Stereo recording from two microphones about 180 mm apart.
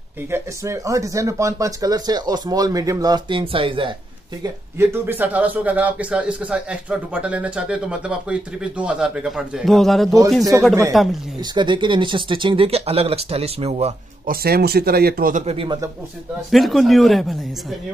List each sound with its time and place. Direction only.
0.3 s speech: 15° right (ahead or behind)
4.4 s speech: 15° right (ahead or behind)
11.5 s speech: 25° right (ahead or behind)
14.2 s speech: 55° right (ahead or behind)
15.4 s speech: 30° right (ahead or behind)
16.4 s speech: centre (ahead or behind)